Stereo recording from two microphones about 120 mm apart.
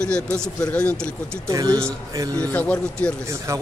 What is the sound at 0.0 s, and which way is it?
Speech, 5° left (ahead or behind).